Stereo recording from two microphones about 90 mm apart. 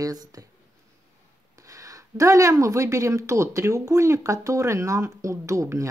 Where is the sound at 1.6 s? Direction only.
35° right (ahead or behind).